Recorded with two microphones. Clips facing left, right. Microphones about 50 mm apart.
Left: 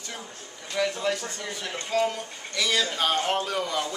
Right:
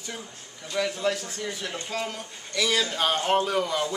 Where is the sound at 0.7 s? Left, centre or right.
Centre.